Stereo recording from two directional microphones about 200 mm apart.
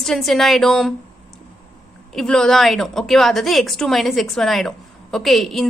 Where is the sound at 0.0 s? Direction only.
Centre (ahead or behind).